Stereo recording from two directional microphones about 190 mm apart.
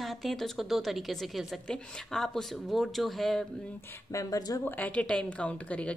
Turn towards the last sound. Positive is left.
turn(degrees=5)  # may be behind; listen again after turning